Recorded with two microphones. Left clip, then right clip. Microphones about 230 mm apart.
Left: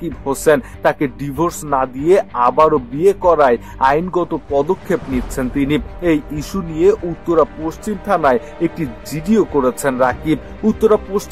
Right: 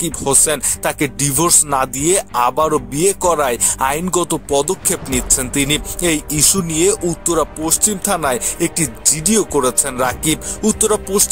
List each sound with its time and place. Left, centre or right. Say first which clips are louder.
0.2 s speech: left 4 dB; right